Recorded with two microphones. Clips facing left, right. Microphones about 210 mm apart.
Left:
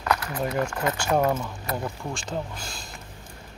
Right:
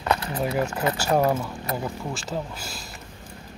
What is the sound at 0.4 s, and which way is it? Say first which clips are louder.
Speech: right 2 dB; 10° right (ahead or behind).